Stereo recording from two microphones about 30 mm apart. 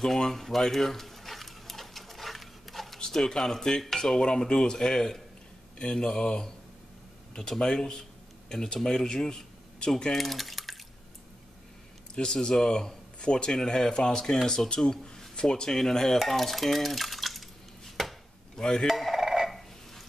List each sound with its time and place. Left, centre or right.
0.2 s a sound: centre
3.1 s speech: centre
7.9 s a sound: centre
8.8 s speech: centre
10.1 s drip: centre
12.2 s speech: left
16.2 s dishes: centre
18.6 s speech: left
18.9 s speech: centre
19.1 s a sound: centre